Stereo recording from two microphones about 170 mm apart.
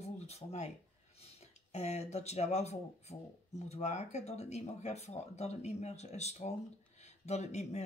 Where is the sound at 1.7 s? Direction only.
40° left (ahead or behind).